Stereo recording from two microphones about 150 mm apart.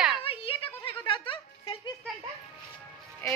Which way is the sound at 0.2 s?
35° left (ahead or behind).